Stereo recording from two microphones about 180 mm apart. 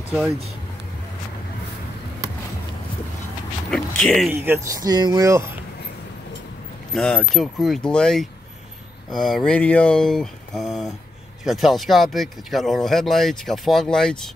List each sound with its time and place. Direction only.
3.7 s speech: 5° left (ahead or behind)
4.3 s speech: 15° right (ahead or behind)
6.9 s speech: 5° left (ahead or behind)